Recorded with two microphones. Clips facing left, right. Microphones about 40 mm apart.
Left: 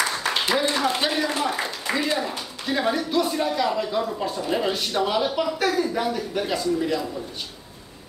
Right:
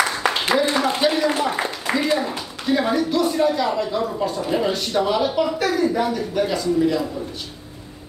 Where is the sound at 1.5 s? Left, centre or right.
Right.